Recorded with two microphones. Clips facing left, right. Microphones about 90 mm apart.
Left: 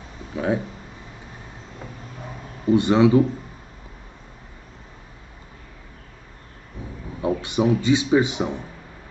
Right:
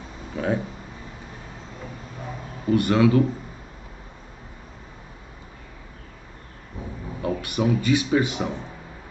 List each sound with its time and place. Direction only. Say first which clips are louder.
0.3 s speech: left 2 dB; 10° left (ahead or behind)
2.7 s speech: left 3 dB; 20° left (ahead or behind)
7.2 s a man's voice: left 3 dB; 20° left (ahead or behind)